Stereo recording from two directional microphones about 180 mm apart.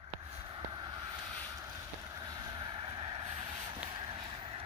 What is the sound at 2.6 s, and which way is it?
Vehicle, 25° right (ahead or behind).